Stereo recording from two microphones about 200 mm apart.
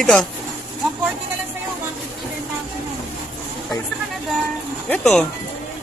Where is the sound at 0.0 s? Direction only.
5° left (ahead or behind).